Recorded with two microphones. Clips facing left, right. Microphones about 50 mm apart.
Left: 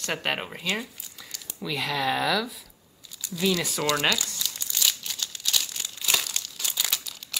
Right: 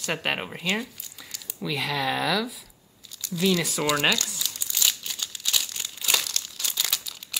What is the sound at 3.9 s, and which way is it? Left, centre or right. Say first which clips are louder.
Speech: right 1 dB; centre.